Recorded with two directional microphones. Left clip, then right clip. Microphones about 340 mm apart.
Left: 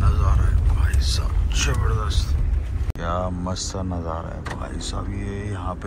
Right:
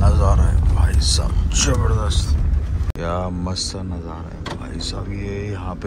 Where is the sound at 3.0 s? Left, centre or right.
Centre.